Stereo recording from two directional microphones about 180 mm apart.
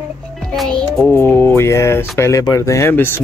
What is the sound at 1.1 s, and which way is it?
Speech, 15° left (ahead or behind).